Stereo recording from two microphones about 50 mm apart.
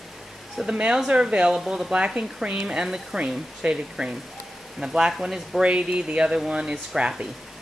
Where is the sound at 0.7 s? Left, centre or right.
Centre.